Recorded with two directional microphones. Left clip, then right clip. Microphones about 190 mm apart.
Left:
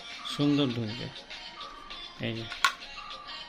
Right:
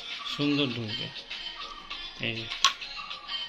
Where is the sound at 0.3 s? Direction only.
50° left (ahead or behind).